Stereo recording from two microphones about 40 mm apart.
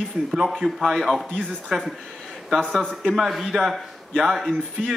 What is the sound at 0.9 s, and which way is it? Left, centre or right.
Speech, centre.